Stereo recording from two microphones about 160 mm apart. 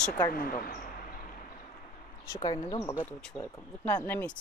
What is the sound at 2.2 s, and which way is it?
Speech, 20° left (ahead or behind).